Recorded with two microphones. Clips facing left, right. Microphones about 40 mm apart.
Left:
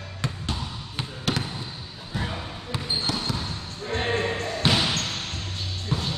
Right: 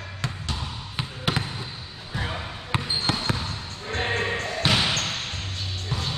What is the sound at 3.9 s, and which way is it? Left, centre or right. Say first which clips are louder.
Music: even; centre.